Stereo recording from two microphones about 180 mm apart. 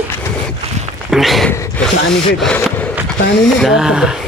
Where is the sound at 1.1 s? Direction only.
Centre (ahead or behind).